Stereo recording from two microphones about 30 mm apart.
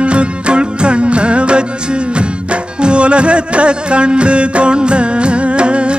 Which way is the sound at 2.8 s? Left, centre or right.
Right.